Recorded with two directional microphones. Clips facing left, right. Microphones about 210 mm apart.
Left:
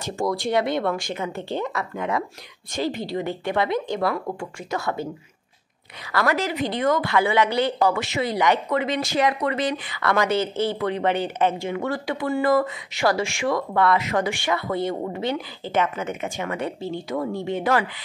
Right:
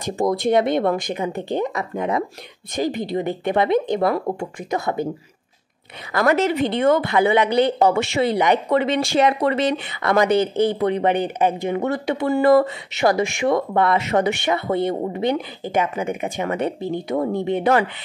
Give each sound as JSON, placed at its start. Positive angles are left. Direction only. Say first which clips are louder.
{"t": 0.0, "sound": "a woman's voice", "louder": "right 5 dB", "side_deg": -20}
{"t": 6.1, "sound": "a woman's voice", "louder": "right 5 dB", "side_deg": -25}
{"t": 12.3, "sound": "a woman's voice", "louder": "right 5 dB", "side_deg": -35}